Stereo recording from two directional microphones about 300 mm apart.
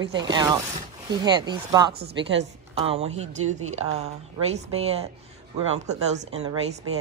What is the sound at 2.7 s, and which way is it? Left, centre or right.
Speech, centre.